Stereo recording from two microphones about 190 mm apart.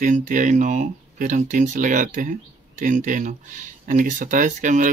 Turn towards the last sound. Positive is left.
turn(degrees=-45)  # may be behind; listen again after turning